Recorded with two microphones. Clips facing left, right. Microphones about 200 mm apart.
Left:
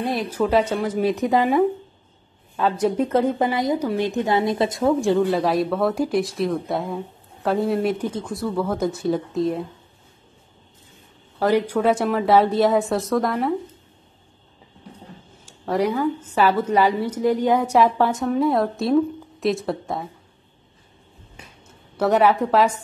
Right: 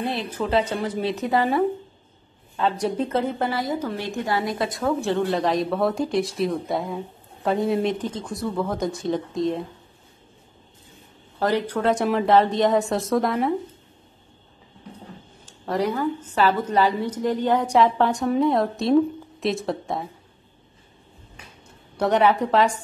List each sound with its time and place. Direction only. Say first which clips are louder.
0.0 s a woman's voice: left 4 dB; 10° left (ahead or behind)
5.0 s speech: left 3 dB; 10° left (ahead or behind)
11.3 s a woman's voice: left 4 dB; 10° left (ahead or behind)
15.4 s a woman's voice: left 2 dB; 10° left (ahead or behind)
21.9 s speech: left 2 dB; 5° left (ahead or behind)